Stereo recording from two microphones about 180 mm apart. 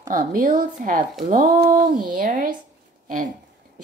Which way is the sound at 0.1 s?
50° right (ahead or behind).